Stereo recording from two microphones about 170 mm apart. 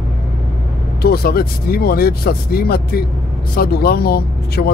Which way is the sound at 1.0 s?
65° left (ahead or behind).